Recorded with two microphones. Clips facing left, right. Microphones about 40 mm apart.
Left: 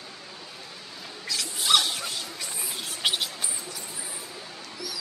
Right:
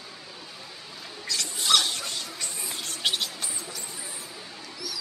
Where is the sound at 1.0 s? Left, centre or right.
Centre.